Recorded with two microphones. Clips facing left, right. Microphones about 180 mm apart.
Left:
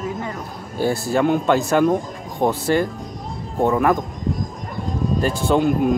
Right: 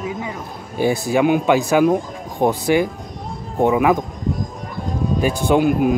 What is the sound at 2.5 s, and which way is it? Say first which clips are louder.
Speech: right 2 dB; 15° right (ahead or behind).